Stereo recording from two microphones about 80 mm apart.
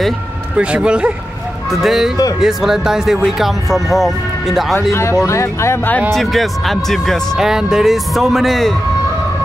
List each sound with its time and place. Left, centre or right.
0.6 s speech: centre
5.2 s speech: left
6.1 s speech: centre